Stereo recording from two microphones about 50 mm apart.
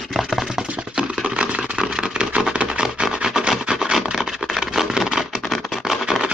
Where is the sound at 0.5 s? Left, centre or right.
Centre.